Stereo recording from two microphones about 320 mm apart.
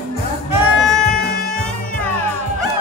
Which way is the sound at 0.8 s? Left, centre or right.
Centre.